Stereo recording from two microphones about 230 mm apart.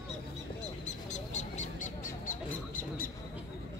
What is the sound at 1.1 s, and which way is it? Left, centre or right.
Honk, left.